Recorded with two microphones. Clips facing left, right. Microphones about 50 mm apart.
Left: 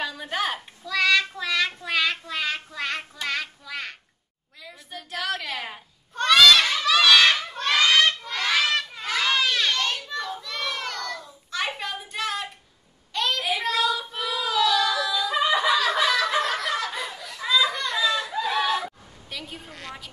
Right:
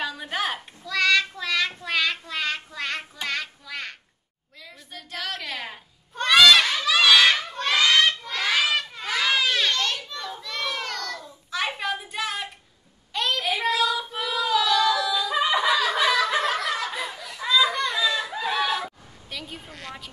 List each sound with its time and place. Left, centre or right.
0.0 s child singing: centre
3.3 s a sound: centre
4.6 s cat: centre
6.2 s crowd: centre
9.8 s children playing: centre
10.2 s a sound: centre
13.6 s child singing: centre